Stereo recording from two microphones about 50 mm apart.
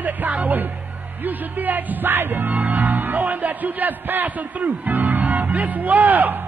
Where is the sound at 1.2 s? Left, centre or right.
Right.